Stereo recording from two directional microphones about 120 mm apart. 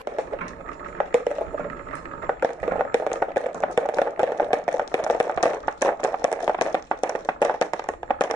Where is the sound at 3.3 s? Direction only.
25° left (ahead or behind).